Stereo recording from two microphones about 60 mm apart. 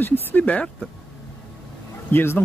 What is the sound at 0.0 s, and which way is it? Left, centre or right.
Speech, left.